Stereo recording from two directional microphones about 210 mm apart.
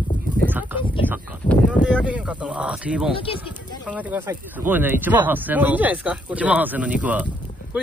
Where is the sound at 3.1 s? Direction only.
25° left (ahead or behind).